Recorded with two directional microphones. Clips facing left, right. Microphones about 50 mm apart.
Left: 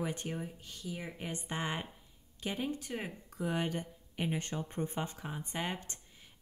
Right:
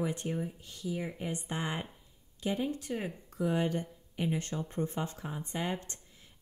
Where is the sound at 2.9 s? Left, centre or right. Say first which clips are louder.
Right 4 dB; centre.